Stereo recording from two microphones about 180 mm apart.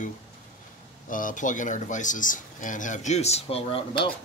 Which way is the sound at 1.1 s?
45° left (ahead or behind).